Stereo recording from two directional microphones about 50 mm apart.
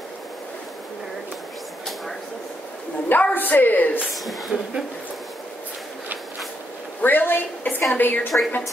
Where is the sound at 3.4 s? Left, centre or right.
Left.